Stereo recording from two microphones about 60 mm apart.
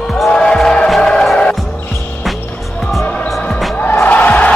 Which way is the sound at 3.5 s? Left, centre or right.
Centre.